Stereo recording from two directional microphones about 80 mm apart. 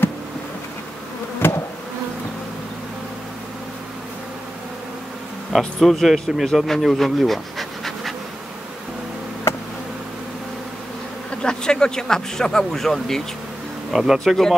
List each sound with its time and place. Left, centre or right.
1.4 s bee: left
5.5 s speech: centre
11.4 s speech: centre